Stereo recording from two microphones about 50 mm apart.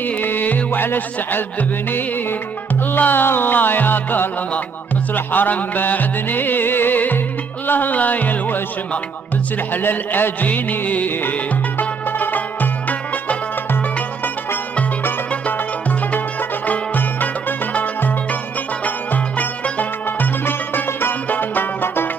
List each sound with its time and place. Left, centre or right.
0.0 s music: left
9.7 s music: left
15.4 s music: left
18.9 s music: left